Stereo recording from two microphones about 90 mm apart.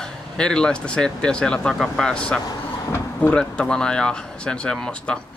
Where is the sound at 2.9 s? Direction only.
20° left (ahead or behind).